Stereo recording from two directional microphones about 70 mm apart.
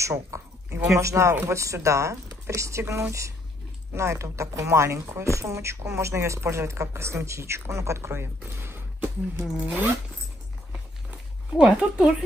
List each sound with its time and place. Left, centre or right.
0.0 s speech: right
9.6 s speech: centre
11.1 s speech: centre